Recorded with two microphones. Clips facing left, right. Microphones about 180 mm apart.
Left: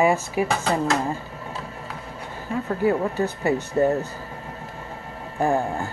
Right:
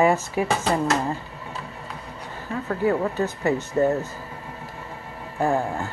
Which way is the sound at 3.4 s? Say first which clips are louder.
Even; 15° left (ahead or behind).